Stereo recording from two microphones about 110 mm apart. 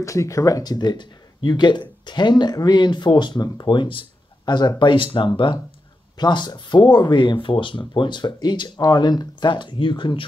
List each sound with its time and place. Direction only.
0.0 s speech: 30° left (ahead or behind); by 10.2 s 45° left (ahead or behind)